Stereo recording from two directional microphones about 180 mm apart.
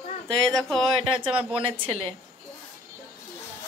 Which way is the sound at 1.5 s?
35° right (ahead or behind).